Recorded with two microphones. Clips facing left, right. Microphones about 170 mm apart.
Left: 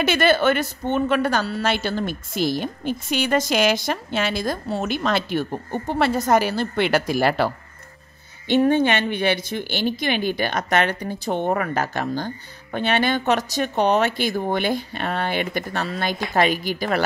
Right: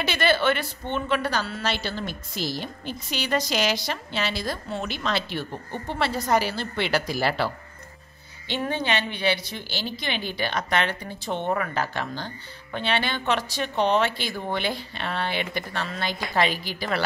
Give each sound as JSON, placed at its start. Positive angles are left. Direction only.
{"t": 0.0, "sound": "a woman's voice", "side_deg": 50}